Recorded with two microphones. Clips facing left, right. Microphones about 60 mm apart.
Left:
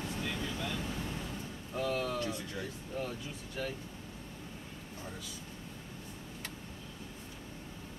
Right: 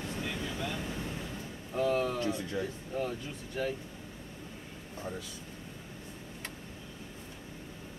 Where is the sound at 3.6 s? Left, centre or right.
Centre.